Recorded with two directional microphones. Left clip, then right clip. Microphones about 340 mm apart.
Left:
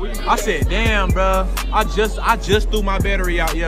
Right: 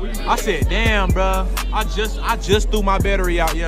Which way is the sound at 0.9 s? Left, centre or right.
Centre.